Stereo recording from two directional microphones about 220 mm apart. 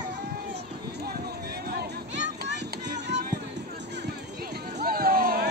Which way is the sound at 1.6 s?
45° right (ahead or behind).